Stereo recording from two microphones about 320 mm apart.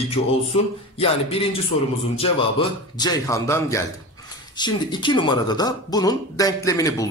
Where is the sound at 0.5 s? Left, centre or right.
Centre.